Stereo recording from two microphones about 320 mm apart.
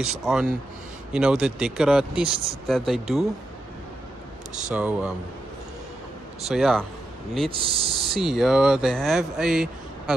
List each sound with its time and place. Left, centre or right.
0.0 s speech: centre
4.6 s speech: centre
6.5 s speech: centre
7.4 s speech: centre
8.1 s speech: centre